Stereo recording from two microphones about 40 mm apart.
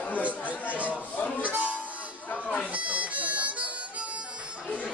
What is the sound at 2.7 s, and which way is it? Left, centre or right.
Harmonica, right.